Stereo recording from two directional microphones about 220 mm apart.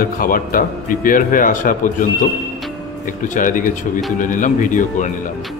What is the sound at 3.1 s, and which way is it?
A man's voice, 35° left (ahead or behind).